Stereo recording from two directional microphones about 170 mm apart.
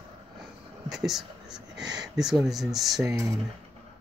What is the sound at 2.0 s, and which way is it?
Speech, 5° right (ahead or behind).